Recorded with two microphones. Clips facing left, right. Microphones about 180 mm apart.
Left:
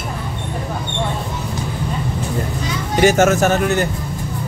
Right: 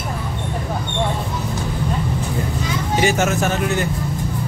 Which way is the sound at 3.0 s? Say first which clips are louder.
Left 7 dB; 45° left (ahead or behind).